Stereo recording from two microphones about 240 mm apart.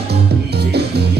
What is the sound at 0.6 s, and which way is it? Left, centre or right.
Music, right.